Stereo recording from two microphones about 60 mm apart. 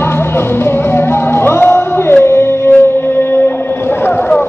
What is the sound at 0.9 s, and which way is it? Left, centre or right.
Music, left.